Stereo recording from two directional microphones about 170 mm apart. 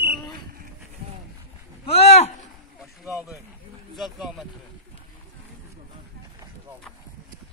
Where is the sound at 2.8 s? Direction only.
Centre (ahead or behind).